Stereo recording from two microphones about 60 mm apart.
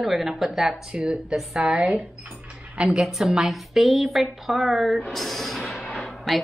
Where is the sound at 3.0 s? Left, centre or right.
Centre.